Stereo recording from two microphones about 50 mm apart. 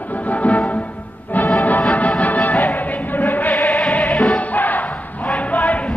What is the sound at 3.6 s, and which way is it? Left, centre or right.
Music, centre.